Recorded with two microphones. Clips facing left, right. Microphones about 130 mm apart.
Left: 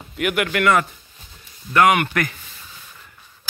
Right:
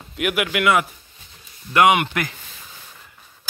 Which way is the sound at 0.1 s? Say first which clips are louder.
Left 1 dB; 5° right (ahead or behind).